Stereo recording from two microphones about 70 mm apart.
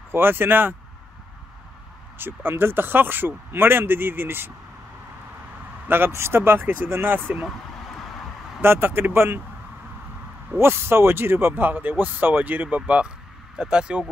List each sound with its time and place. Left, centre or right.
0.1 s speech: right
2.1 s speech: right
5.9 s speech: right
8.5 s speech: right
10.6 s speech: right; by 14.0 s centre